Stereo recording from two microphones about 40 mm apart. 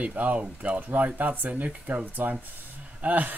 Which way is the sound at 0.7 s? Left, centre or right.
Right.